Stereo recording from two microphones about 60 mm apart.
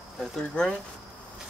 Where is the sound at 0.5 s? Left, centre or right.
Centre.